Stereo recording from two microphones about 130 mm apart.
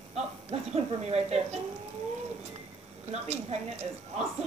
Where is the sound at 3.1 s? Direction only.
55° right (ahead or behind).